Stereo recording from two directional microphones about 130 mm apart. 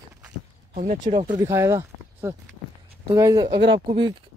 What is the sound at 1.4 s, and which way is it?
Speech, 20° right (ahead or behind).